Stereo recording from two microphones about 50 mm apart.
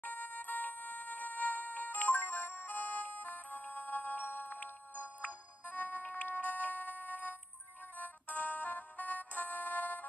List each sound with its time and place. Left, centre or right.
0.0 s music: left